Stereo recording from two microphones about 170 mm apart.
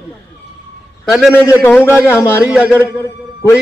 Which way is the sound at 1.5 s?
15° left (ahead or behind).